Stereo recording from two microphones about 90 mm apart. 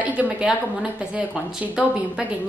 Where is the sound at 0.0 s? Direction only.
15° right (ahead or behind).